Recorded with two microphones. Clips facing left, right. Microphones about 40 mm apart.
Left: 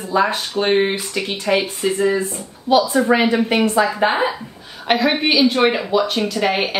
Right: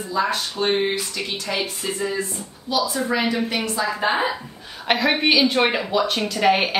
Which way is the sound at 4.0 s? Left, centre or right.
Centre.